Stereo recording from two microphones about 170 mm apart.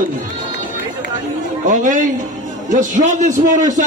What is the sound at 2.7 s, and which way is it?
A man's voice, 45° right (ahead or behind).